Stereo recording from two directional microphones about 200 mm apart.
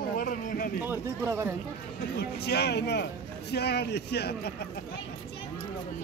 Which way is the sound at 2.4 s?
55° left (ahead or behind).